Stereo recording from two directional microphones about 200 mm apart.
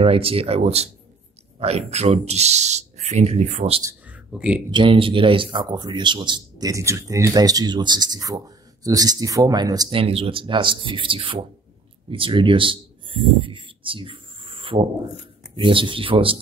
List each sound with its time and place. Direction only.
0.0 s speech: 30° right (ahead or behind)
4.3 s speech: 5° right (ahead or behind)
4.6 s speech: 25° right (ahead or behind)